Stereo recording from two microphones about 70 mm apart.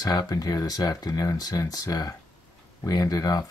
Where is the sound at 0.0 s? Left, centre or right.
Left.